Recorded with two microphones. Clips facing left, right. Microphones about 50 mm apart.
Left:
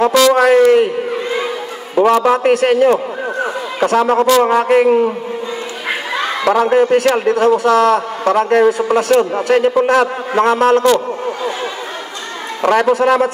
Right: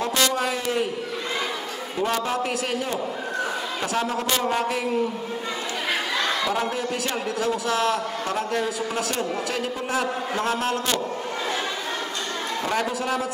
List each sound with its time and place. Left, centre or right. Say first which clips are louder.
0.1 s a man's voice: left 14 dB; left
2.2 s a man's voice: left 14 dB; left
4.3 s a man's voice: left 12 dB; left
6.4 s a man's voice: left 11 dB; left
6.7 s a man's voice: left 16 dB; left
9.8 s a man's voice: left 13 dB; left
12.6 s a man's voice: left 14 dB; left
12.9 s a man's voice: left 14 dB; left